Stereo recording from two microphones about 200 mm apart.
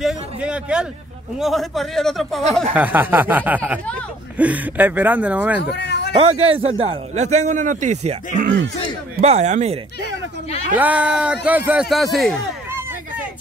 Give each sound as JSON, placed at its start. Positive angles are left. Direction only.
{"t": 0.0, "sound": "a sound", "side_deg": -5}
{"t": 1.4, "sound": "speech", "side_deg": 0}
{"t": 2.7, "sound": "speech", "side_deg": -10}
{"t": 5.6, "sound": "a sound", "side_deg": 55}
{"t": 6.1, "sound": "a man's voice", "side_deg": -30}
{"t": 9.2, "sound": "a man's voice", "side_deg": -35}
{"t": 10.8, "sound": "speech", "side_deg": -5}